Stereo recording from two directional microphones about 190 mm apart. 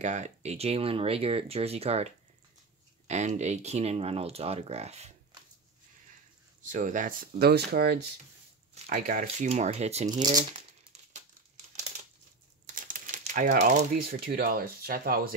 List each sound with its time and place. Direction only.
0.0 s speech: 35° right (ahead or behind)
3.1 s speech: 35° right (ahead or behind)
6.6 s speech: 45° right (ahead or behind); by 8.0 s 60° right (ahead or behind)
8.8 s speech: 50° right (ahead or behind)
10.1 s speech: 20° right (ahead or behind)
12.7 s speech: 45° right (ahead or behind)